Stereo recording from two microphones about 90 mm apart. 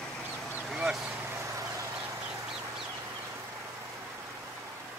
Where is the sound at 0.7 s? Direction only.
5° right (ahead or behind).